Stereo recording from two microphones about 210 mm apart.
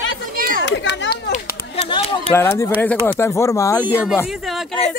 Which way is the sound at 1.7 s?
25° left (ahead or behind).